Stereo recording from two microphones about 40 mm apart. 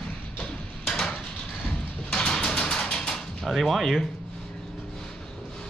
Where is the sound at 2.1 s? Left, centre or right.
Centre.